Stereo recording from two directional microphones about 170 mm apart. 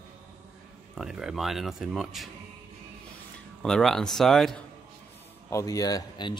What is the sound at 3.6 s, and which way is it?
Speech, 5° left (ahead or behind).